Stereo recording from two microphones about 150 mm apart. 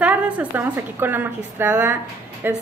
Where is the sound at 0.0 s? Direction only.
10° right (ahead or behind).